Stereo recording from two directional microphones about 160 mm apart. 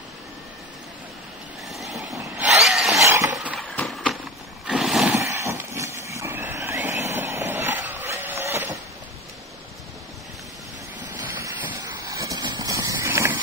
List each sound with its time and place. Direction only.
1.7 s vehicle: centre (ahead or behind)
2.1 s vehicle: 10° right (ahead or behind)
2.6 s a sound: centre (ahead or behind)
3.7 s horse: centre (ahead or behind)
4.6 s roar: centre (ahead or behind)
5.1 s a sound: 20° right (ahead or behind)
6.0 s vehicle: 15° right (ahead or behind)
11.4 s vehicle: 15° right (ahead or behind)